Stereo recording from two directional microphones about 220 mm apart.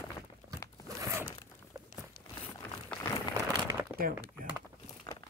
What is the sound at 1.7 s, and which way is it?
Walk, 15° right (ahead or behind).